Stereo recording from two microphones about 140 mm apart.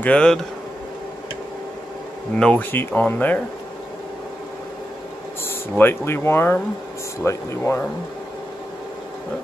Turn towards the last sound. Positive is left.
turn(degrees=20)  # may be behind; listen again after turning